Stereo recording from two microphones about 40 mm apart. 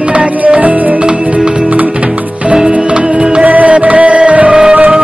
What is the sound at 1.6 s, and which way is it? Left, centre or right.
Music, right.